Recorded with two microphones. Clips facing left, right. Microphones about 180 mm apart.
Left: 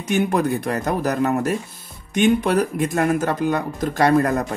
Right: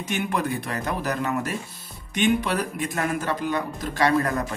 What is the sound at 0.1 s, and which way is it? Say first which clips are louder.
Speech: left 7 dB; 45° left (ahead or behind).